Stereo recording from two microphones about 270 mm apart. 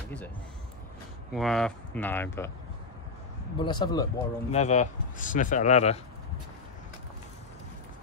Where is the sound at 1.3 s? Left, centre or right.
Centre.